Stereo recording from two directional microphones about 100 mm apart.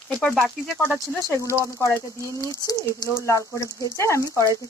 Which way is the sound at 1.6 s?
30° left (ahead or behind).